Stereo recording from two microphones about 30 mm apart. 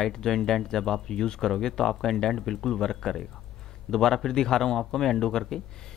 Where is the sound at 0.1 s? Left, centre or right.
Centre.